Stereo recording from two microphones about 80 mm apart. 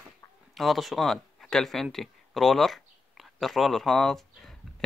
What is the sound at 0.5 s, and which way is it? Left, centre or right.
Speech, centre.